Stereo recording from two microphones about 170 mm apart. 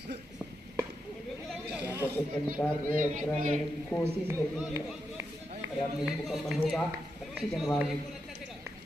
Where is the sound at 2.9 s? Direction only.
50° right (ahead or behind).